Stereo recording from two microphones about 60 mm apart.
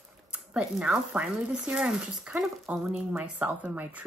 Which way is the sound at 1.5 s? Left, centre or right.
Centre.